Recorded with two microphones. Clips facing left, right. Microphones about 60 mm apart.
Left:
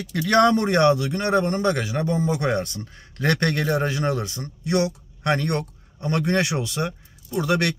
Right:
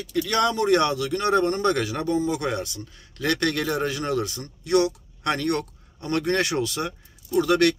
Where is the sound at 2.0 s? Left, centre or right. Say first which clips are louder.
Left 2 dB; left.